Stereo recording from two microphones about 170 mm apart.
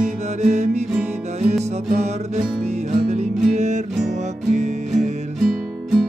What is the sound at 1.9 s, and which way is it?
Music, 40° right (ahead or behind).